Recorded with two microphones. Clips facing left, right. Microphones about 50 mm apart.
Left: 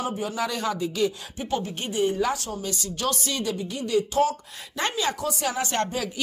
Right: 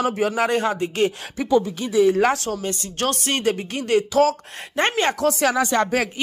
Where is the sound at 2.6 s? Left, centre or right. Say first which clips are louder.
Right 4 dB; right.